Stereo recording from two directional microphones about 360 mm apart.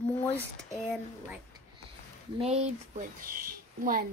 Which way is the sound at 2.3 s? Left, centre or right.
Centre.